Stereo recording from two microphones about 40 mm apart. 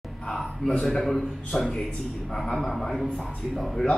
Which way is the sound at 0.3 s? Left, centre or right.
Centre.